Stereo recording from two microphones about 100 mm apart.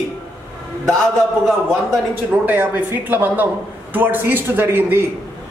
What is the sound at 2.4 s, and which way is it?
A man's voice, 20° right (ahead or behind).